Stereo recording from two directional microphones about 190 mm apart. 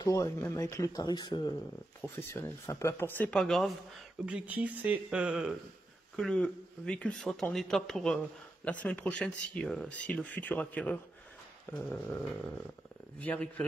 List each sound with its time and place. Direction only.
0.0 s speech: 15° left (ahead or behind)
13.2 s speech: 5° left (ahead or behind)